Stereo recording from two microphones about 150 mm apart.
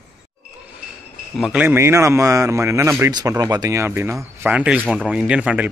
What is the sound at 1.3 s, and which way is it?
Speech, 5° right (ahead or behind).